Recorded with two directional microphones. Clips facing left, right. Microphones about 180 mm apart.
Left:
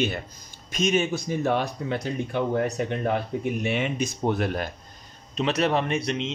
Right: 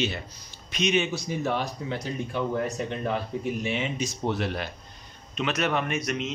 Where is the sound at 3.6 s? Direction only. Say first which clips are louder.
Left 3 dB; 60° left (ahead or behind).